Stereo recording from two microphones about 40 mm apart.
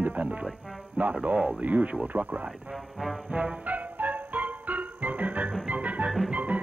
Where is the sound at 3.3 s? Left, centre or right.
Right.